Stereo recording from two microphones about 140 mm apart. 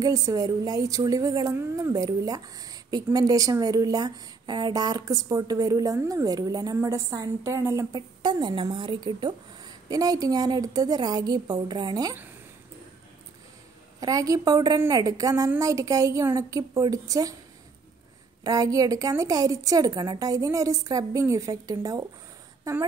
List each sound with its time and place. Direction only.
0.0 s a woman's voice: 25° right (ahead or behind)
13.9 s a woman's voice: 25° right (ahead or behind)
18.4 s a woman's voice: 25° right (ahead or behind)